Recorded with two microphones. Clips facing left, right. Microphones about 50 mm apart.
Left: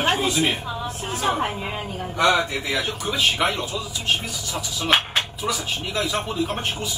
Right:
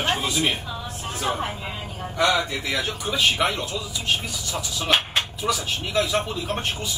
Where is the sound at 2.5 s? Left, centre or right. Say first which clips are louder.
Left 1 dB; centre.